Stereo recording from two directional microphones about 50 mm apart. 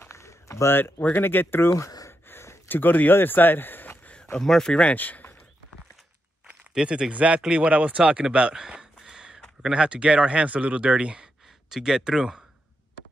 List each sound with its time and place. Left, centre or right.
0.1 s a sound: left
0.7 s speech: left
1.1 s speech: left
1.7 s speech: left
2.2 s a sound: left
2.7 s a man's voice: left
4.4 s speech: centre
4.9 s speech: left
6.7 s speech: centre
8.5 s a sound: centre
9.6 s speech: centre